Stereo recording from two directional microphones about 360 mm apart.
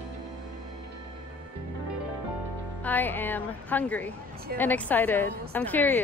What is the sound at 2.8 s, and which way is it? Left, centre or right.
A woman's voice, centre.